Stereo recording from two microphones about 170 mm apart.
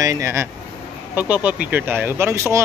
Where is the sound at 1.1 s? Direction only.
10° right (ahead or behind).